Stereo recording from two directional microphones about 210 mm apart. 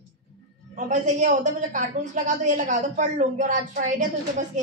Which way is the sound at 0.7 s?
35° right (ahead or behind).